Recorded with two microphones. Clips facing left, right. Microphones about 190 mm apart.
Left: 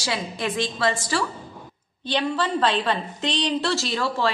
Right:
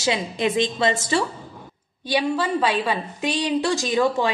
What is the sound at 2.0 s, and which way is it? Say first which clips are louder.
A woman's voice: right 2 dB; 10° right (ahead or behind).